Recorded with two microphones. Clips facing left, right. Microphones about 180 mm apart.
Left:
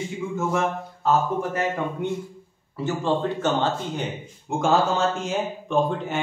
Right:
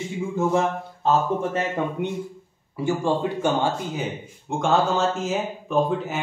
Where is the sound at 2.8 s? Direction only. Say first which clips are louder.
Right 1 dB; 10° right (ahead or behind).